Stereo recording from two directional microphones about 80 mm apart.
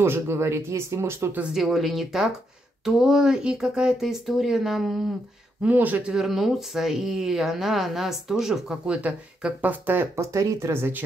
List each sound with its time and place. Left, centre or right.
0.0 s speech: right
1.5 s speech: centre
5.6 s speech: centre
6.1 s speech: centre; by 10.0 s right
10.1 s speech: right